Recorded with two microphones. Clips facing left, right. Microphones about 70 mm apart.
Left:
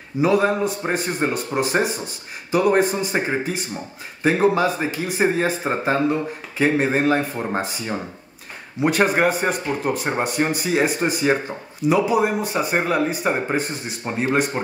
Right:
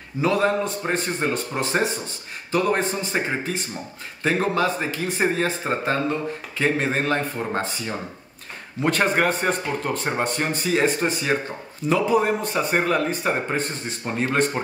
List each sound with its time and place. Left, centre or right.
0.2 s speech: centre